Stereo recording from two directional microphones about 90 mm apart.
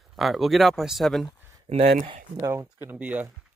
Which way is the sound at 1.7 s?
75° right (ahead or behind).